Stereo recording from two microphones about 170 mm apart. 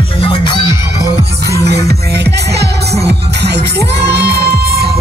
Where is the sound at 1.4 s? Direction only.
75° right (ahead or behind).